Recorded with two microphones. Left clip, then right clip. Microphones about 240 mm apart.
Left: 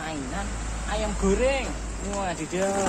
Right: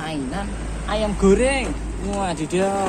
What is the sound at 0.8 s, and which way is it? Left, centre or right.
Speech, right.